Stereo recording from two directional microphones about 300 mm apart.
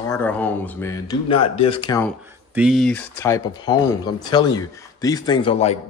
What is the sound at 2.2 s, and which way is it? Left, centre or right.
Speech, centre.